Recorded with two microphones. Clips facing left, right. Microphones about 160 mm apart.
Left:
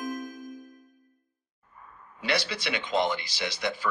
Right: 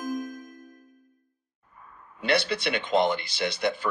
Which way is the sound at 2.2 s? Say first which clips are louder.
Right 4 dB; 55° right (ahead or behind).